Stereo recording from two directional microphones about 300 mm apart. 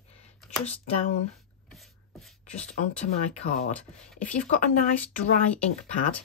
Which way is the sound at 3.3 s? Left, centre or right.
Left.